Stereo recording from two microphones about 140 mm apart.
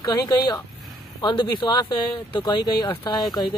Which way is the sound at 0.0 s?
30° left (ahead or behind).